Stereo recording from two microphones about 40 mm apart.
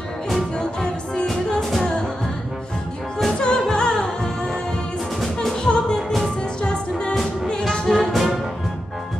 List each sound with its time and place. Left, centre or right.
0.6 s music: centre
1.6 s music: centre
3.3 s music: centre
5.6 s music: centre
7.8 s music: centre